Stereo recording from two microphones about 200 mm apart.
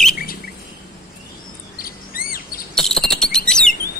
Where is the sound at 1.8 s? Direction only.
45° left (ahead or behind).